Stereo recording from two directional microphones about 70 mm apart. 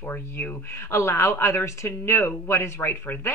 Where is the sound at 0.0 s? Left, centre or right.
Left.